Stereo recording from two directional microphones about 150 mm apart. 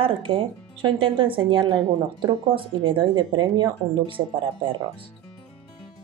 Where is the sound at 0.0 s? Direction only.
35° right (ahead or behind).